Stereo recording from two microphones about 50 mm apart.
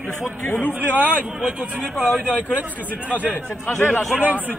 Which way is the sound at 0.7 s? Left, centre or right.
Right.